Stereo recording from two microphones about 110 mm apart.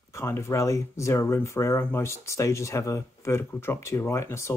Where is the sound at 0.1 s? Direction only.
25° left (ahead or behind).